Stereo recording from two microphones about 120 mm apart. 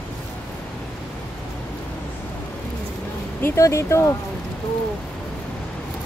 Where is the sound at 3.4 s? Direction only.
25° left (ahead or behind).